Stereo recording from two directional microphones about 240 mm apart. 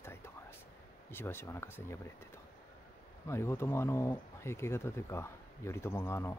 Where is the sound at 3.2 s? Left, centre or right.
Centre.